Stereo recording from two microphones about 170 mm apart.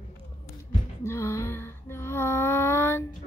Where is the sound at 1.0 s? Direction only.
15° left (ahead or behind).